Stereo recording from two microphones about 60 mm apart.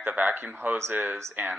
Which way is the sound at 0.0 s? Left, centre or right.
Right.